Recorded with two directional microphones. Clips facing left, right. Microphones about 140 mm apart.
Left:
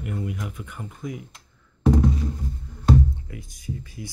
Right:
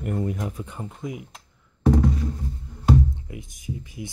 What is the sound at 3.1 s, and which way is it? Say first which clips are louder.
Speech: right 1 dB; 20° right (ahead or behind).